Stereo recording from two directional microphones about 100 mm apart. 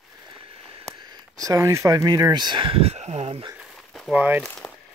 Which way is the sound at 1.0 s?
40° right (ahead or behind).